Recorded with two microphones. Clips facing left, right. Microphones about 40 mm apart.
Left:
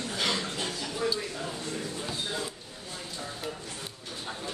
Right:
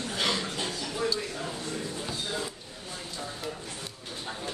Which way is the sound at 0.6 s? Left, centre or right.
Left.